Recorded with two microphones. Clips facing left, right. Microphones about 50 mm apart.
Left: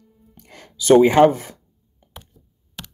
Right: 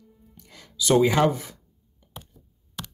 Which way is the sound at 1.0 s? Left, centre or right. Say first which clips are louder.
Left 7 dB; left.